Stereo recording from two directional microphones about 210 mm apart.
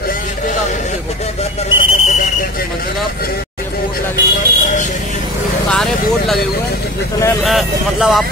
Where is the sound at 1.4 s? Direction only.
25° left (ahead or behind).